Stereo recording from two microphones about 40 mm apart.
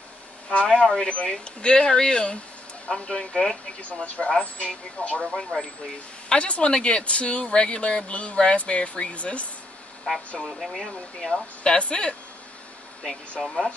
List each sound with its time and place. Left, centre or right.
0.5 s speech: left; by 3.5 s centre
4.0 s speech: left
5.3 s speech: centre
6.2 s speech: left
10.1 s speech: centre
10.6 s speech: centre
11.3 s speech: centre
13.4 s speech: centre